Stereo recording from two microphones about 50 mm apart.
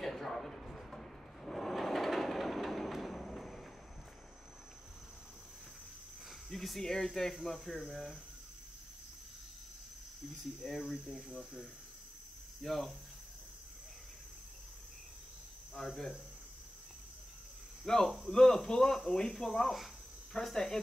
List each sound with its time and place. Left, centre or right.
0.0 s a sound: centre
6.5 s a sound: centre
6.8 s speech: centre
10.6 s cricket: centre
12.6 s cricket: centre
15.9 s cricket: centre
17.8 s speech: centre